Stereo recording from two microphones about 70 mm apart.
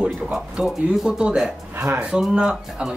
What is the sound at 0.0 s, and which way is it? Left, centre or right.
Speech, centre.